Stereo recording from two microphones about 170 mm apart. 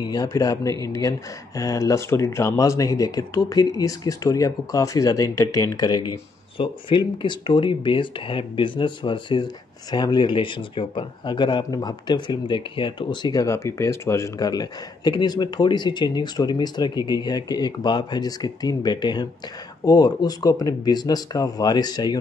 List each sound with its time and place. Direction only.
0.0 s speech: 20° left (ahead or behind)